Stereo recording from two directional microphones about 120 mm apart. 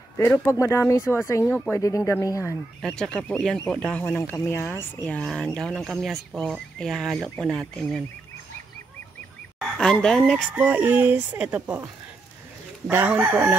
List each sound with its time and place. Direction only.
0.5 s speech: 25° left (ahead or behind)
2.8 s speech: 5° left (ahead or behind)
4.2 s speech: 20° left (ahead or behind); by 8.0 s 5° left (ahead or behind)
9.8 s speech: 5° left (ahead or behind)
10.5 s speech: 15° right (ahead or behind)
12.9 s speech: 15° right (ahead or behind)